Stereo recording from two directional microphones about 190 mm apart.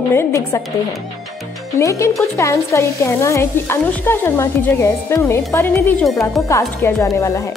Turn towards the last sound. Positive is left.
turn(degrees=15)  # may be behind; listen again after turning